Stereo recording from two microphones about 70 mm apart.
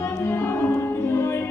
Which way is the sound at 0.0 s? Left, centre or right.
Left.